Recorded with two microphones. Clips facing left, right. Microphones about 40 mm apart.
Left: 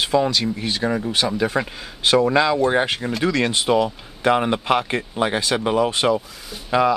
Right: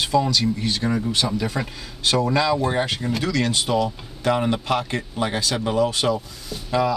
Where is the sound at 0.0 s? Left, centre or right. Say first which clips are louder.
Left 1 dB; left.